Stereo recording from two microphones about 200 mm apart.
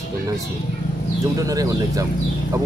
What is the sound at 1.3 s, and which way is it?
Speech, 15° right (ahead or behind).